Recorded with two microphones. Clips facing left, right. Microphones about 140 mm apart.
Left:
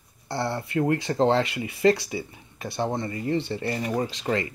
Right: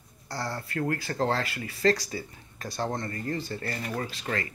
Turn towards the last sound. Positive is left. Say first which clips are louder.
# left 6 dB
turn(degrees=25)  # may be behind; listen again after turning